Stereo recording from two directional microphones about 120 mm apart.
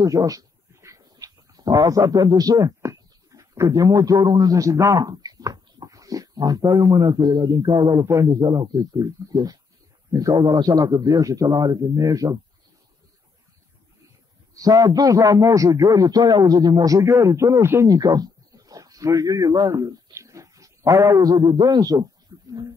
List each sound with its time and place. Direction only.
0.0 s a man's voice: 30° right (ahead or behind)
14.5 s a man's voice: 30° right (ahead or behind)
17.8 s a man's voice: 30° right (ahead or behind)